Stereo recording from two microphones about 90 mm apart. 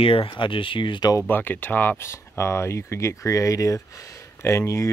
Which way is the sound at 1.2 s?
20° left (ahead or behind).